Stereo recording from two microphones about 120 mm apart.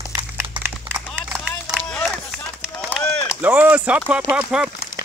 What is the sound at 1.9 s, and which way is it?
Run, 5° left (ahead or behind).